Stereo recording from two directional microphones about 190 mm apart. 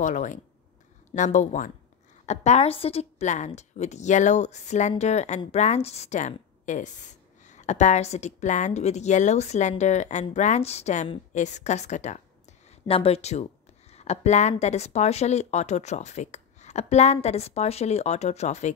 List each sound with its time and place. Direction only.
0.0 s a woman's voice: 40° left (ahead or behind)